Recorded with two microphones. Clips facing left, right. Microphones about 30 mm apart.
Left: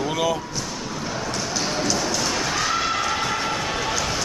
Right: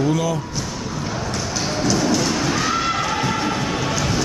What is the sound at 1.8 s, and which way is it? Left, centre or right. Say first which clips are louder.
Thump: right 7 dB; centre.